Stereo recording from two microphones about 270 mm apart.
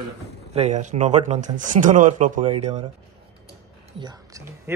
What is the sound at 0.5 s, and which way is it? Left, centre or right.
Speech, right.